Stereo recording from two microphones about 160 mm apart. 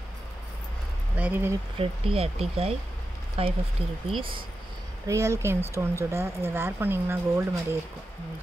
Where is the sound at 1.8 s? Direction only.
35° right (ahead or behind).